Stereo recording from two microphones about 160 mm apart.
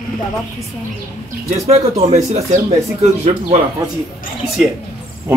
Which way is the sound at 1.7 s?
45° right (ahead or behind).